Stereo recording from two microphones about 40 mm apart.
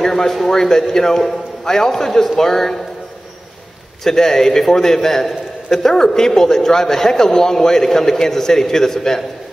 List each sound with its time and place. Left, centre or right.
0.0 s a sound: centre
0.5 s a man's voice: centre
4.0 s a man's voice: centre